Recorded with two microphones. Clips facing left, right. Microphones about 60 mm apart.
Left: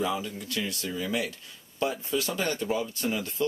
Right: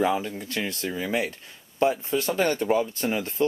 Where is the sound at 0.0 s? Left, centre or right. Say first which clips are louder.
Right 5 dB; right.